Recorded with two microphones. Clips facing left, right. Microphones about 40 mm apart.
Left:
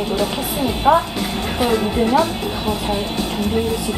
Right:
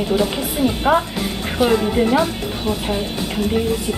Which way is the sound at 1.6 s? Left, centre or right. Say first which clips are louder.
Right 2 dB; centre.